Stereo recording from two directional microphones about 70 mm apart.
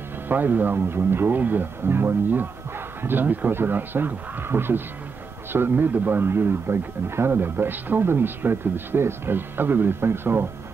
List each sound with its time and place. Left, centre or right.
0.3 s speech: right